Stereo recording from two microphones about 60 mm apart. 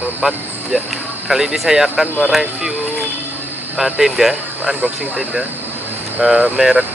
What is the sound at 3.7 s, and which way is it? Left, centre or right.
Speech, centre.